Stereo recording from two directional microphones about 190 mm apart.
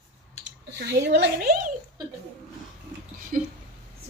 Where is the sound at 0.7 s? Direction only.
60° right (ahead or behind).